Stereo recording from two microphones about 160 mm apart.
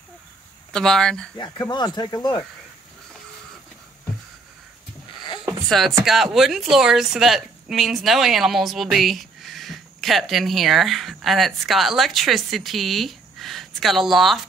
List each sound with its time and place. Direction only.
0.7 s a woman's voice: 5° left (ahead or behind)
1.3 s speech: 25° left (ahead or behind)
5.7 s a woman's voice: centre (ahead or behind)